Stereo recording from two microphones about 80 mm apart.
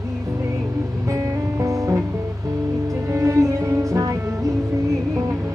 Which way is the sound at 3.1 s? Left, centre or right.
Right.